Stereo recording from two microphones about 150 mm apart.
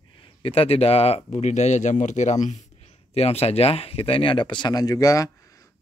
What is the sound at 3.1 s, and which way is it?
Speech, 45° left (ahead or behind).